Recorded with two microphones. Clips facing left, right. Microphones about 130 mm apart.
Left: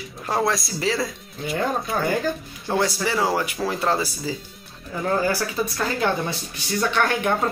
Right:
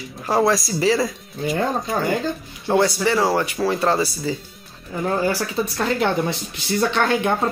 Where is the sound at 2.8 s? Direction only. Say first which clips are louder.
Right 4 dB; 5° left (ahead or behind).